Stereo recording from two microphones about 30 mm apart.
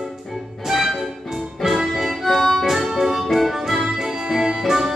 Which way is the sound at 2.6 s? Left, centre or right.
Centre.